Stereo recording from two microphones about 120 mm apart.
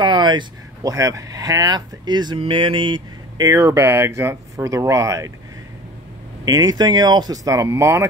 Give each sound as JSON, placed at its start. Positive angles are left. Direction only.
{"t": 0.0, "sound": "a sound", "side_deg": -40}
{"t": 0.9, "sound": "speech", "side_deg": -30}
{"t": 6.4, "sound": "speech", "side_deg": -30}